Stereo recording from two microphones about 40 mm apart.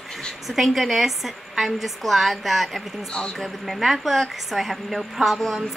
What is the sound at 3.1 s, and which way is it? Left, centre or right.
Speech, left.